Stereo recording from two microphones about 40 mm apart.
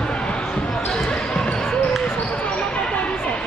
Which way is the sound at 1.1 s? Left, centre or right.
Left.